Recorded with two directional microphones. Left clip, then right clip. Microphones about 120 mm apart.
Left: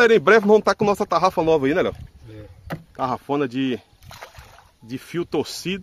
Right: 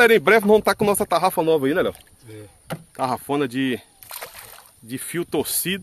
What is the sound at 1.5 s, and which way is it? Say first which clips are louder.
Speech: left 1 dB; 25° left (ahead or behind).